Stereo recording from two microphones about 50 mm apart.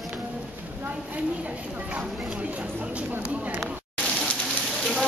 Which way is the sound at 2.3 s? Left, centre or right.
Right.